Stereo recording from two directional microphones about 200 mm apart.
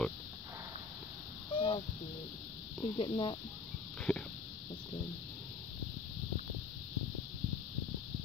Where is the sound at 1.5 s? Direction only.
25° left (ahead or behind).